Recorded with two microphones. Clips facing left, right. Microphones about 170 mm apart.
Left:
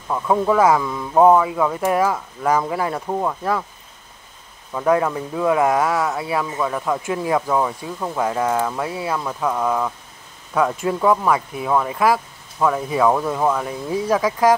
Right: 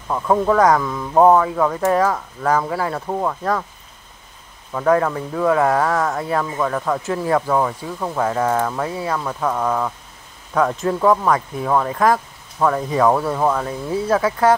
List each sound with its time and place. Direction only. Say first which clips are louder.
0.5 s speech: even; 5° left (ahead or behind)
3.1 s speech: right 2 dB; 5° left (ahead or behind)
4.7 s speech: right 1 dB; 10° left (ahead or behind)
8.2 s speech: right 1 dB; 10° left (ahead or behind)
13.1 s speech: right 1 dB; 10° right (ahead or behind)
13.6 s speech: right 1 dB; 10° left (ahead or behind)